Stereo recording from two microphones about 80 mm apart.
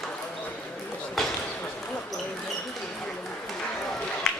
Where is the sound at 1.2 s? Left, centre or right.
Centre.